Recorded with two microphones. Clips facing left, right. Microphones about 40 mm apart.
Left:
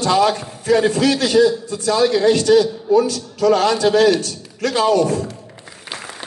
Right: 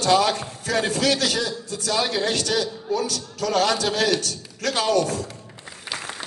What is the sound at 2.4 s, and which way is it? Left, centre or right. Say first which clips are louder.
A man's voice: left 11 dB; left.